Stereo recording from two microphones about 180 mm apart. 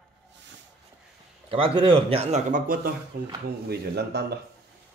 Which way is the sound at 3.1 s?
60° right (ahead or behind).